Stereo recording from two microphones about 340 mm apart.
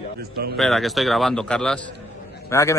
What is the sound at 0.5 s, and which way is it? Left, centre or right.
A man's voice, centre.